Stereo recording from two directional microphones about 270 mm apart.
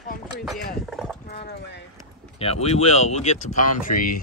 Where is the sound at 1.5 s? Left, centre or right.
Left.